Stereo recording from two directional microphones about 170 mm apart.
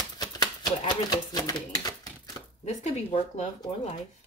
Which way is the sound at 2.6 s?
40° left (ahead or behind).